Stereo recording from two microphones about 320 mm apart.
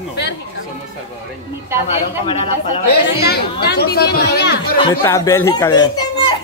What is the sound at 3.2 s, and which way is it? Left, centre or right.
Speech, left.